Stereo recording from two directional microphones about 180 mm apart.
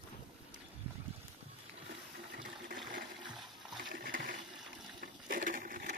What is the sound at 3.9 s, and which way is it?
Toilet flush, 55° right (ahead or behind).